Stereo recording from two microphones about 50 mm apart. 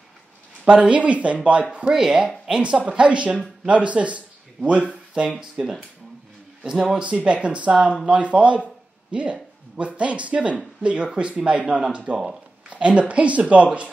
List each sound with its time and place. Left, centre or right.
0.7 s speech: right
2.0 s speech: centre
2.6 s speech: right
5.4 s speech: centre
7.1 s speech: centre
7.4 s speech: right